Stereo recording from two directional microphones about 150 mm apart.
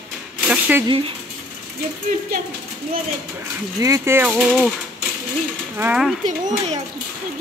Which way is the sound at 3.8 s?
20° right (ahead or behind).